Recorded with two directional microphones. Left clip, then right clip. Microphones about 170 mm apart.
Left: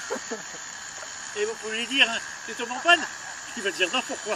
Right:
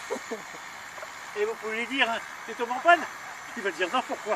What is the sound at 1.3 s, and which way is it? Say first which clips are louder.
Speech: even; 30° right (ahead or behind).